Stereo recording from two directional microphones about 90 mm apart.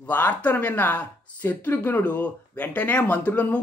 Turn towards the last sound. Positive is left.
turn(degrees=15)  # may be behind; listen again after turning